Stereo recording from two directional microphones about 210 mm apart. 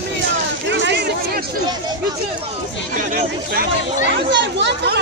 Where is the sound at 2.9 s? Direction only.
40° right (ahead or behind).